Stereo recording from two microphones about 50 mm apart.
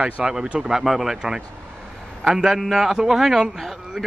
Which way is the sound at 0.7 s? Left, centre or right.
Centre.